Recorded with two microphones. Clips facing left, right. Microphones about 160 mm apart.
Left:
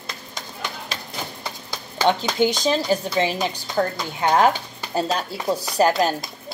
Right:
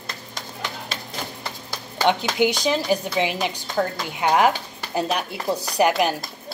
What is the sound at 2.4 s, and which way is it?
A woman's voice, 15° right (ahead or behind).